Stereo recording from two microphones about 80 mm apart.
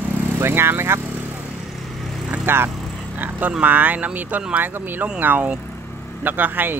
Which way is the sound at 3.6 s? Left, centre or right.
Right.